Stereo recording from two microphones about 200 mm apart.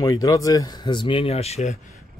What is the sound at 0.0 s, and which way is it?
Speech, 20° left (ahead or behind).